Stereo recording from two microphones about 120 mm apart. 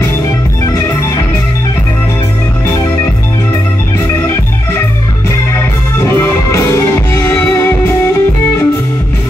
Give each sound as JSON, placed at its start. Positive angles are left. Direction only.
{"t": 5.9, "sound": "music", "side_deg": 20}